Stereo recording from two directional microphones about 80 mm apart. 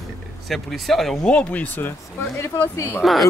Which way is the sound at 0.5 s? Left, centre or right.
Centre.